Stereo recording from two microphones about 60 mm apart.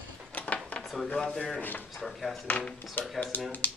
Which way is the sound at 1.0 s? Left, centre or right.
Centre.